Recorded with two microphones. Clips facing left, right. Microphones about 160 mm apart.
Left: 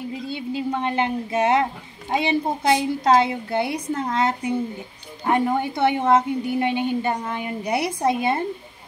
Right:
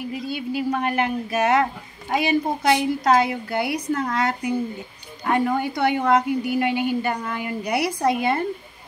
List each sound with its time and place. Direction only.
0.1 s a woman's voice: 25° left (ahead or behind)